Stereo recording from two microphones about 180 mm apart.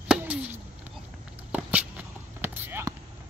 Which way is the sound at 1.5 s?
10° right (ahead or behind).